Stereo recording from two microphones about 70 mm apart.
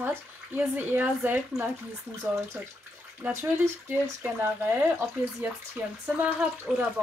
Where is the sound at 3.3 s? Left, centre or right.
Right.